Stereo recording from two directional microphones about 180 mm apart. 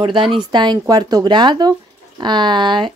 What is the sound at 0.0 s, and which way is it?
Speech, 30° right (ahead or behind).